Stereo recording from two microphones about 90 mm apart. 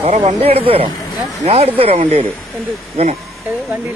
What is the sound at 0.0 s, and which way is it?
Speech, 90° right.